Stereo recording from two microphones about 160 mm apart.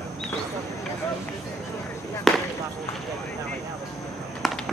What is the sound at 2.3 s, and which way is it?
Basketball bounce, centre (ahead or behind).